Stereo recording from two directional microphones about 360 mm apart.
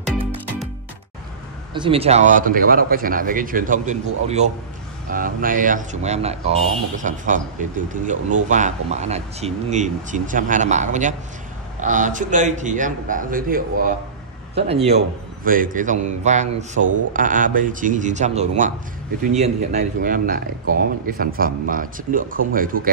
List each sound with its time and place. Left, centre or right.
1.7 s speech: centre